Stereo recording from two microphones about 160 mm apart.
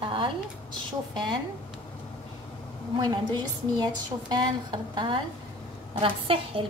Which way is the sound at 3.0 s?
25° right (ahead or behind).